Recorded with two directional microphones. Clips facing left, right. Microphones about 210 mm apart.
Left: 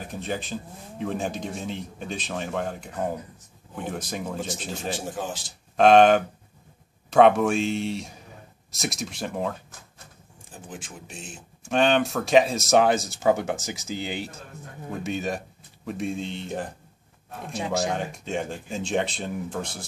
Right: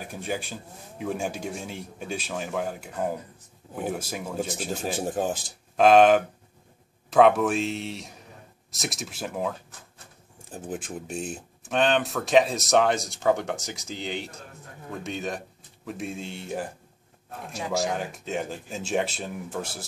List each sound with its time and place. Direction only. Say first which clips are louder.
0.0 s speech: left 1 dB; 10° right (ahead or behind)
5.2 s speech: right 8 dB; 50° right (ahead or behind)
5.8 s speech: left 1 dB; 5° right (ahead or behind)
10.7 s speech: right 8 dB; 45° right (ahead or behind)
11.6 s speech: left 2 dB; centre (ahead or behind)